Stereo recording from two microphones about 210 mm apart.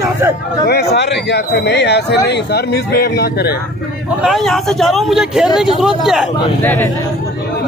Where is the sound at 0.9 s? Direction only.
55° left (ahead or behind).